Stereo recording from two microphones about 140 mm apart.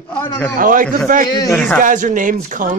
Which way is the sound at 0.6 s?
80° right.